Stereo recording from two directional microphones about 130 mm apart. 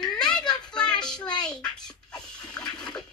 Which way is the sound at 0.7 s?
5° left (ahead or behind).